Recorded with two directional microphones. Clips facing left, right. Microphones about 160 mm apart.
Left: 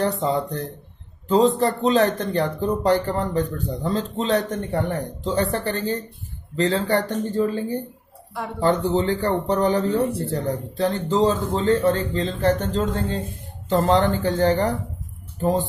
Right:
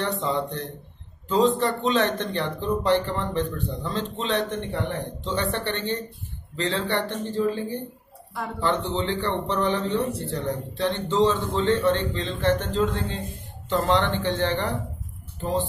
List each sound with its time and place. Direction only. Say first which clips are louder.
0.0 s speech: left 4 dB; 35° left (ahead or behind)
8.9 s speech: left 5 dB; 40° left (ahead or behind)